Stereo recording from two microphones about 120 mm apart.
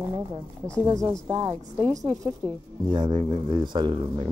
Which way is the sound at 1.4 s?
45° right (ahead or behind).